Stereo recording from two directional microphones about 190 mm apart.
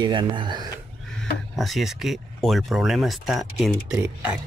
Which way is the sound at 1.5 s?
Centre (ahead or behind).